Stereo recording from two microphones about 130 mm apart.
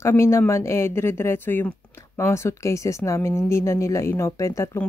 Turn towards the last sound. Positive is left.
turn(degrees=20)  # may be behind; listen again after turning